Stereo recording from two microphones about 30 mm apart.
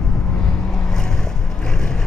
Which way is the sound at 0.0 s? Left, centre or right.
Centre.